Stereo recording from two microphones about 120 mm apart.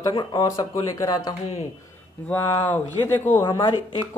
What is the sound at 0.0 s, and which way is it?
Speech, 40° left (ahead or behind).